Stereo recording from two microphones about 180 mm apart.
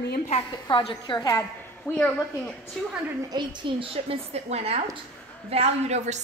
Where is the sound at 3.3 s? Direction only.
25° right (ahead or behind).